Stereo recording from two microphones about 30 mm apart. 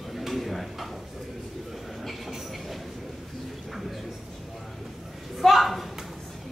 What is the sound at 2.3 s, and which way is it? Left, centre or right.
Train, centre.